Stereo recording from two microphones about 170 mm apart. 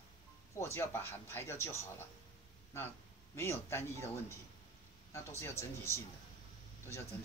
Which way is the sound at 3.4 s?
15° left (ahead or behind).